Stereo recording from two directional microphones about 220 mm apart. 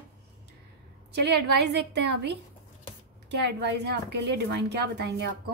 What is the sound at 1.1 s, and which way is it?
A woman's voice, 50° right (ahead or behind).